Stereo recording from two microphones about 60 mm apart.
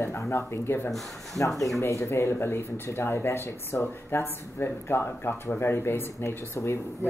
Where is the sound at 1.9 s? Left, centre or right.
Left.